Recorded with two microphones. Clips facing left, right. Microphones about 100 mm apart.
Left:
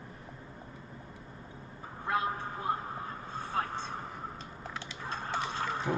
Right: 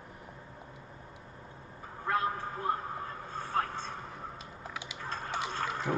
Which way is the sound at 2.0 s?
45° right (ahead or behind).